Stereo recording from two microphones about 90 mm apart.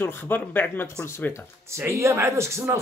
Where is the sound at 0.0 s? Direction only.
20° left (ahead or behind).